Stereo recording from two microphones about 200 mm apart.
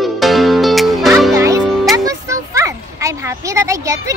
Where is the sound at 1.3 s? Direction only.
15° right (ahead or behind).